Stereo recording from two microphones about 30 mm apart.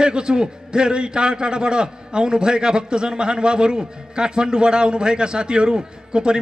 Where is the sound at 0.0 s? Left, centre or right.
Right.